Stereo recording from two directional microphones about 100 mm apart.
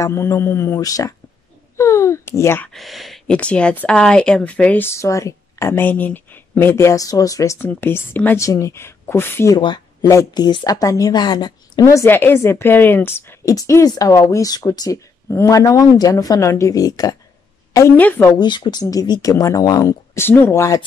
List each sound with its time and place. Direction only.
0.0 s speech: 30° left (ahead or behind)
0.7 s speech: 35° left (ahead or behind)
2.7 s speech: centre (ahead or behind)
3.3 s speech: 10° left (ahead or behind); by 7.5 s 35° left (ahead or behind)
7.5 s speech: 20° left (ahead or behind)
8.4 s speech: 30° left (ahead or behind)
10.0 s speech: 40° left (ahead or behind)
11.8 s speech: 30° left (ahead or behind)
13.5 s speech: 30° left (ahead or behind)
17.9 s speech: 20° left (ahead or behind)
18.3 s speech: 50° left (ahead or behind); by 20.8 s 30° left (ahead or behind)